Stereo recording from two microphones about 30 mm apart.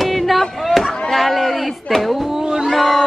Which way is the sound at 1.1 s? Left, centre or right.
Centre.